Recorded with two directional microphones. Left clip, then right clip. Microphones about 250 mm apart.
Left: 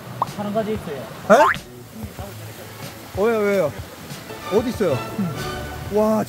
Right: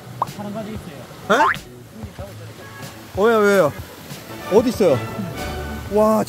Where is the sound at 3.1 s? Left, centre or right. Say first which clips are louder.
Right 4 dB; right.